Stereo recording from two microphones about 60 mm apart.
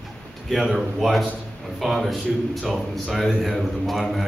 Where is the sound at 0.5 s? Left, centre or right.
Centre.